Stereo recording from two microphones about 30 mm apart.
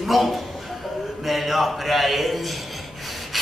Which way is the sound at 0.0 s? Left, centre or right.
Centre.